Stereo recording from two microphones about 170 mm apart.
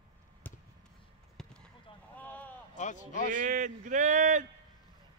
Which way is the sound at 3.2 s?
45° right (ahead or behind).